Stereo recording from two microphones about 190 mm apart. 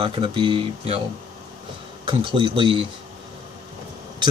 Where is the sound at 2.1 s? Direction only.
25° right (ahead or behind).